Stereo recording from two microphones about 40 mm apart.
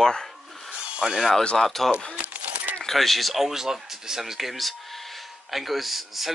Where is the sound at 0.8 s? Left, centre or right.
Right.